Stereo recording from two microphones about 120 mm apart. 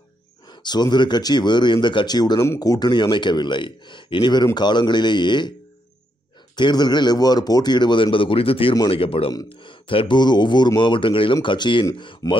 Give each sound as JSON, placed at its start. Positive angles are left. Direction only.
{"t": 0.5, "sound": "speech", "side_deg": 35}
{"t": 6.5, "sound": "speech", "side_deg": 35}